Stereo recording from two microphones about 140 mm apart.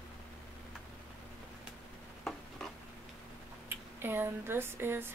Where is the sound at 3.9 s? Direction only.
15° right (ahead or behind).